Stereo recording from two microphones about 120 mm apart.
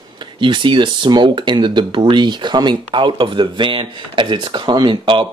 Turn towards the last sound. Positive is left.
turn(degrees=-40)  # may be behind; listen again after turning